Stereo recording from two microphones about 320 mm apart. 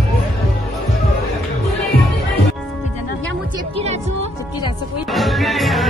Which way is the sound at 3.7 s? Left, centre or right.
Centre.